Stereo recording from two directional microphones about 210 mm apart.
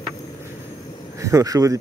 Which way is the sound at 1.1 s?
15° right (ahead or behind).